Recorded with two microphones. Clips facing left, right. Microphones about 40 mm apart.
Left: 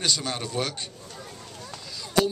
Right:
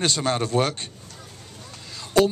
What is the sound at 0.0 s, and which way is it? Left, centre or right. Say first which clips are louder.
Speech: right 5 dB; right.